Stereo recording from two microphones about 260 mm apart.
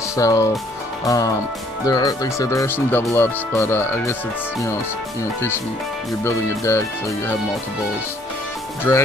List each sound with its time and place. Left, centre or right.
0.1 s speech: centre
6.2 s speech: centre
8.9 s speech: centre